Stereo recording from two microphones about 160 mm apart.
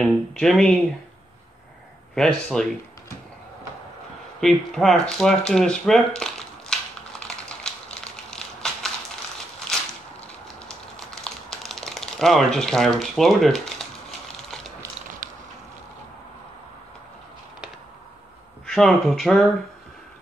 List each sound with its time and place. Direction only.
0.0 s speech: centre (ahead or behind)
2.1 s speech: 5° left (ahead or behind)
4.4 s a sound: centre (ahead or behind)
10.2 s typing: 5° left (ahead or behind)
15.2 s a sound: 55° right (ahead or behind)
18.7 s speech: centre (ahead or behind)